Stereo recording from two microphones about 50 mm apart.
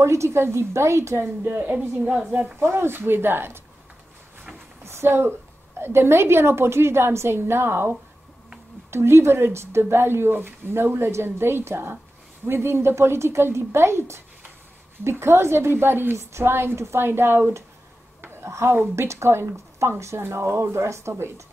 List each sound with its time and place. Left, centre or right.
0.0 s a woman's voice: right
1.2 s a woman's voice: right
4.8 s a sound: right
5.8 s a woman's voice: right
8.9 s a woman's voice: right
18.2 s a sound: right
18.5 s a woman's voice: right